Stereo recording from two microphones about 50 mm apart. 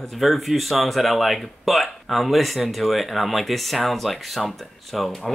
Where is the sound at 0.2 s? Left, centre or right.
Centre.